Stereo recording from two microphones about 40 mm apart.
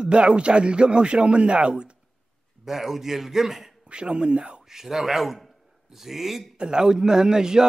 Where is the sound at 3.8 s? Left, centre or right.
Right.